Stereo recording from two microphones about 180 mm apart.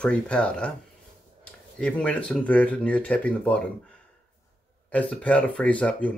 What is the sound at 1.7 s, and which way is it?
Speech, 5° left (ahead or behind).